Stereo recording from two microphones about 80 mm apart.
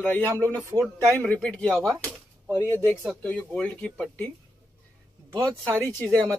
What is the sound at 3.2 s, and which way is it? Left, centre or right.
Speech, centre.